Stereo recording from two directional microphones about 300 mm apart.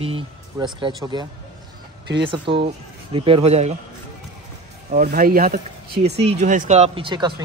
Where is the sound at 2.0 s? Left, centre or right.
Right.